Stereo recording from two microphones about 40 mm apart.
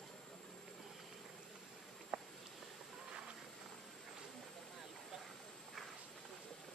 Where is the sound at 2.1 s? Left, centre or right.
Right.